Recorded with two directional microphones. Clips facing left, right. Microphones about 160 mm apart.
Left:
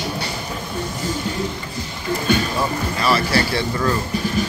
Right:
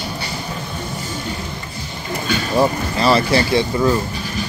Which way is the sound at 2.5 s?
25° right (ahead or behind).